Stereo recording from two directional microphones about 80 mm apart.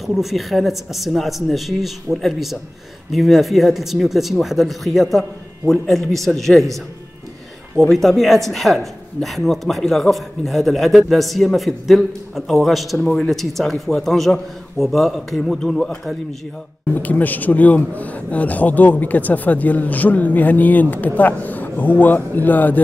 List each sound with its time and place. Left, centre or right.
0.0 s speech: centre
7.8 s speech: centre
16.9 s a man's voice: left